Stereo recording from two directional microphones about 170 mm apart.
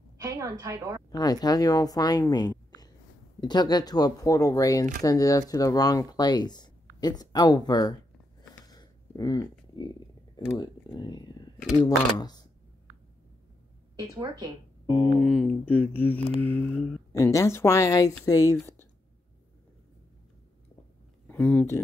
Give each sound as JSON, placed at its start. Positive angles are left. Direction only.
{"t": 0.2, "sound": "a woman's voice", "side_deg": -20}
{"t": 1.1, "sound": "speech", "side_deg": 20}
{"t": 8.6, "sound": "a sound", "side_deg": 25}
{"t": 11.8, "sound": "speech", "side_deg": 25}
{"t": 13.9, "sound": "a woman's voice", "side_deg": -25}
{"t": 15.1, "sound": "speech", "side_deg": 5}
{"t": 17.1, "sound": "speech", "side_deg": 20}
{"t": 21.3, "sound": "speech", "side_deg": 10}